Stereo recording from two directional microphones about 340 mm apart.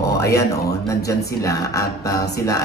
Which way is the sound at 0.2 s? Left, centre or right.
Centre.